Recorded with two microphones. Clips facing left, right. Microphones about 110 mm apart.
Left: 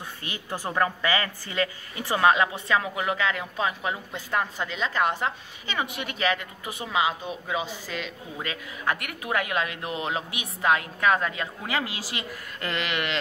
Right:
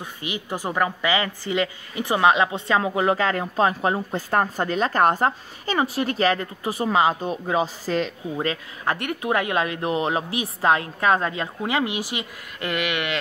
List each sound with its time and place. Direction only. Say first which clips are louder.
0.2 s a woman's voice: right 5 dB; 15° right (ahead or behind)